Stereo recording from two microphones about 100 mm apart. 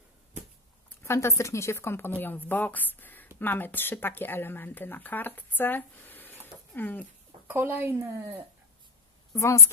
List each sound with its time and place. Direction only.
0.8 s speech: 25° left (ahead or behind)
7.4 s speech: 20° right (ahead or behind)